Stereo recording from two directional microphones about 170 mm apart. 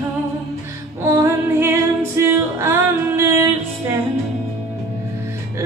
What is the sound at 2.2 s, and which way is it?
Music, 15° right (ahead or behind).